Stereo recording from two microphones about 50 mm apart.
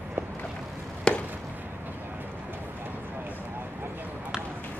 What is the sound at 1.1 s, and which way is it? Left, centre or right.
Chop, centre.